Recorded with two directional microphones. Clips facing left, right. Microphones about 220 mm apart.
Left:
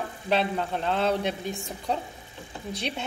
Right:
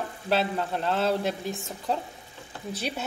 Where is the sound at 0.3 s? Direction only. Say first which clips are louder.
Even; 5° right (ahead or behind).